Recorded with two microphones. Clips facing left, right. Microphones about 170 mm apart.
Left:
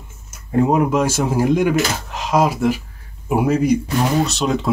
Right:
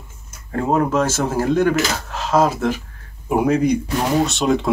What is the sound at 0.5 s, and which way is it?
Speech, 15° left (ahead or behind).